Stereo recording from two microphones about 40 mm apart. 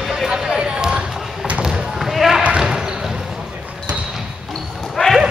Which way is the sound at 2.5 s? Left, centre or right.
Centre.